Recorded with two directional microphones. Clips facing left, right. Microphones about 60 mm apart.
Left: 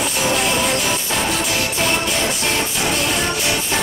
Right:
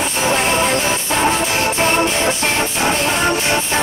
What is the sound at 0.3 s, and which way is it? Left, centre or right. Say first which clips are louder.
Music: right 4 dB; right.